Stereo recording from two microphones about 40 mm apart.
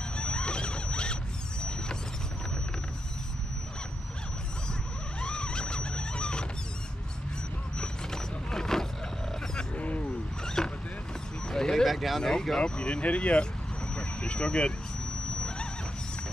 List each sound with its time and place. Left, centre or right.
0.2 s zipper: left
5.2 s a sound: left
7.8 s vehicle: centre
9.8 s honk: left
10.4 s boat: centre
11.4 s a sound: centre
11.8 s a sound: centre
12.2 s speech: centre
12.7 s speech: left
13.9 s vehicle: left